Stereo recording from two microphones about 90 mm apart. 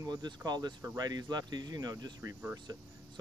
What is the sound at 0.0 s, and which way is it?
Speech, 45° right (ahead or behind).